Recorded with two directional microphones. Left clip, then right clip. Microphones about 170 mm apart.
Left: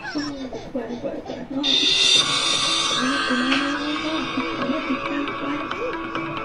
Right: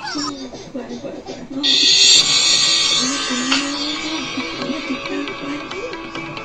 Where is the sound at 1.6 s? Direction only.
20° left (ahead or behind).